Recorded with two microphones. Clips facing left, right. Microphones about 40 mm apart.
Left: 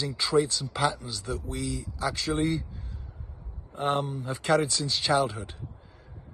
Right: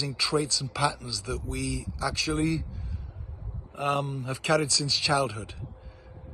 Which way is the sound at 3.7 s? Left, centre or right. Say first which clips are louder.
Even; right.